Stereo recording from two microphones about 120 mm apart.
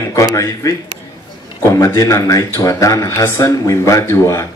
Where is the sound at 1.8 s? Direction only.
25° left (ahead or behind).